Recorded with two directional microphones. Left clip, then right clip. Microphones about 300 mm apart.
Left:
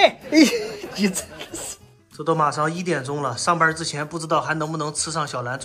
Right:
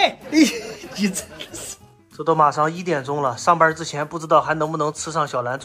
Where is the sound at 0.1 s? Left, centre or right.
Centre.